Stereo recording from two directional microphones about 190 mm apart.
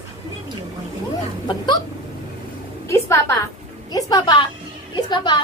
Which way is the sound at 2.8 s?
15° left (ahead or behind).